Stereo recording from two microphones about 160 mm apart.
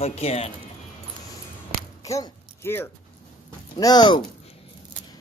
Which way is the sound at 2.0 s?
20° left (ahead or behind).